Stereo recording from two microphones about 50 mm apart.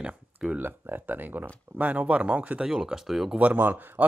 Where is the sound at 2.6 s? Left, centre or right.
Centre.